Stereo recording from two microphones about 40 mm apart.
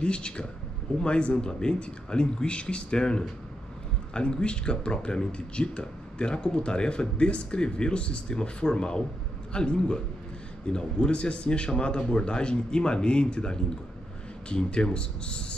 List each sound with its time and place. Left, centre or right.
0.0 s speech: left